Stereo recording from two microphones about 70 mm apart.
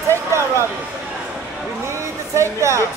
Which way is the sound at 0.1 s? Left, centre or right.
Right.